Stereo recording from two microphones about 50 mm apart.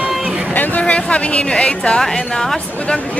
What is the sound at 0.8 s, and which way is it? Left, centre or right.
A woman's voice, left.